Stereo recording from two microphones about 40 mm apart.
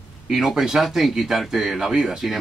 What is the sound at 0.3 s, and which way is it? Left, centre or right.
Speech, centre.